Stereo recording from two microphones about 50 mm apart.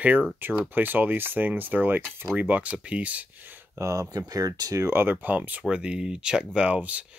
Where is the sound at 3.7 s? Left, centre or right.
Right.